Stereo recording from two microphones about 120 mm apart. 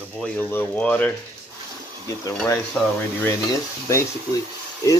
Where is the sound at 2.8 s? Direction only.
10° left (ahead or behind).